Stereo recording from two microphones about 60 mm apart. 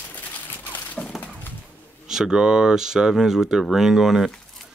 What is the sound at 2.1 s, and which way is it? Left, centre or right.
Speech, centre.